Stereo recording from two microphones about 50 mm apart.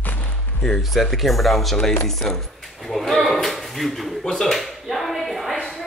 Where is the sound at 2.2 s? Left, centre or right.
Centre.